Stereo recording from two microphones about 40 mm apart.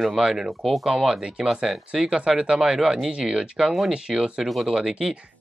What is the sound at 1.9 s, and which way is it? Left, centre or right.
Speech, right.